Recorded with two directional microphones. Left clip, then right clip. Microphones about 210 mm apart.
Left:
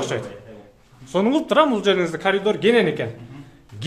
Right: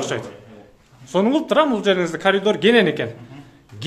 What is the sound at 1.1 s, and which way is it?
A man's voice, centre (ahead or behind).